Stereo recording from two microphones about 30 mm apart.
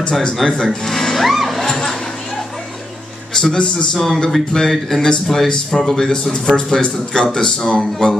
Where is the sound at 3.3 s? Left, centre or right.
Centre.